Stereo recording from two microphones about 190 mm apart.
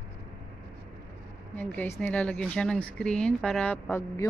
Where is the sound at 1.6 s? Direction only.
10° left (ahead or behind).